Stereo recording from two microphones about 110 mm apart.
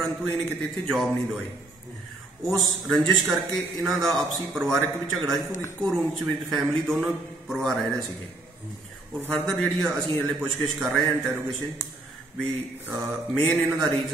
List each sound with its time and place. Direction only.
0.0 s a man's voice: 5° left (ahead or behind)
2.4 s a man's voice: centre (ahead or behind)
5.5 s speech: 25° left (ahead or behind)
5.8 s a man's voice: 5° left (ahead or behind)
9.3 s a man's voice: 5° left (ahead or behind)
12.9 s a man's voice: 5° left (ahead or behind)